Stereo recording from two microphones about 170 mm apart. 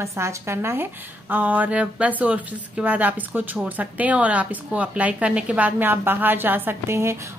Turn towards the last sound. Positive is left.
turn(degrees=-15)  # may be behind; listen again after turning